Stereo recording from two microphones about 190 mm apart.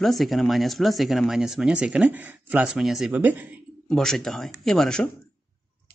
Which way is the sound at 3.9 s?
5° left (ahead or behind).